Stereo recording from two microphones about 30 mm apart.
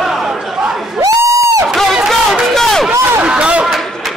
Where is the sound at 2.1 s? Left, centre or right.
Centre.